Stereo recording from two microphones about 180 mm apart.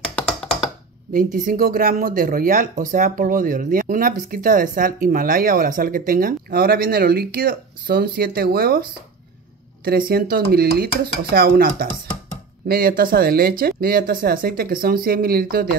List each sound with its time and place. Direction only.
1.1 s speech: 50° right (ahead or behind)
9.8 s speech: 55° right (ahead or behind)